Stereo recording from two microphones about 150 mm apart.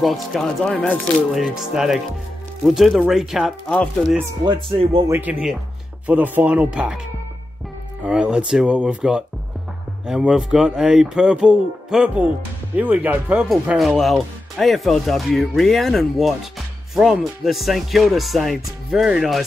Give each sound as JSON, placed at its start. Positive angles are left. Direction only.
{"t": 0.0, "sound": "speech", "side_deg": 0}
{"t": 4.5, "sound": "speech", "side_deg": -35}
{"t": 5.0, "sound": "speech", "side_deg": -15}
{"t": 8.0, "sound": "speech", "side_deg": -5}